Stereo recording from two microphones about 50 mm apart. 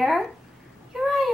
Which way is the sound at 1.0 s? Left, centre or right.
Centre.